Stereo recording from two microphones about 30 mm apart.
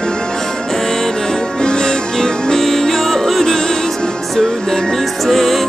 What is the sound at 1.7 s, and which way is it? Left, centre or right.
Music, left.